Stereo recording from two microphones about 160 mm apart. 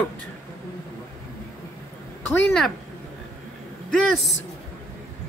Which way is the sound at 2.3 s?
5° left (ahead or behind).